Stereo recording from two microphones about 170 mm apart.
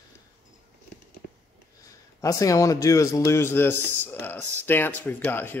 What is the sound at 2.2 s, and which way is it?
Speech, 20° left (ahead or behind).